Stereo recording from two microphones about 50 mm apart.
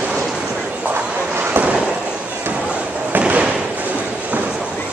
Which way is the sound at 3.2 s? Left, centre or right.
Right.